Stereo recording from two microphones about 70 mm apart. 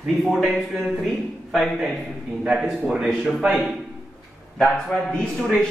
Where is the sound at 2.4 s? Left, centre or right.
Centre.